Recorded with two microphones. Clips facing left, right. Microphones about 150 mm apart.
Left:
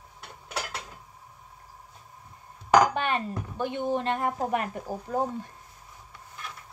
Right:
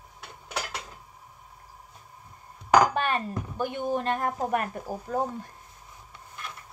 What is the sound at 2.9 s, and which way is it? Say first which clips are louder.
Speech: right 1 dB; 20° left (ahead or behind).